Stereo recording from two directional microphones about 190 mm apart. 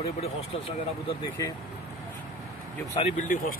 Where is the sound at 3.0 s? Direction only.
35° left (ahead or behind).